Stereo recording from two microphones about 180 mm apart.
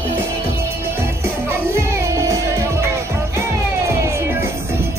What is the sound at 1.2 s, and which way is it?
Music, 15° right (ahead or behind).